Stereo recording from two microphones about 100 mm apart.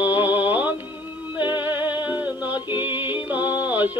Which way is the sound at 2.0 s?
15° right (ahead or behind).